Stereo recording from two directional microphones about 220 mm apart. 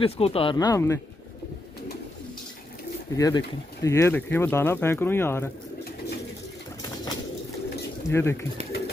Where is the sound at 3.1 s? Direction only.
15° left (ahead or behind).